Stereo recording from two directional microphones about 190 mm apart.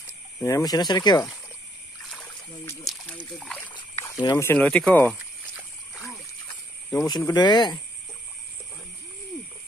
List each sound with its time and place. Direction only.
0.4 s speech: 15° left (ahead or behind)
2.8 s a sound: 5° left (ahead or behind)
3.3 s speech: 5° left (ahead or behind)
3.9 s speech: 15° left (ahead or behind)
6.9 s speech: 15° left (ahead or behind)